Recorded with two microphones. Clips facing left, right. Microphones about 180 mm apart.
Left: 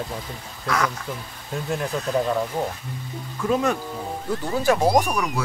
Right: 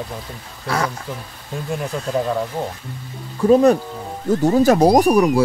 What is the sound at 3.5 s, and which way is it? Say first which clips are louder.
Speech: right 10 dB; 35° right (ahead or behind).